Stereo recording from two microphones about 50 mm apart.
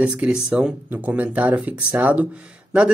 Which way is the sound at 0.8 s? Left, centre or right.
Right.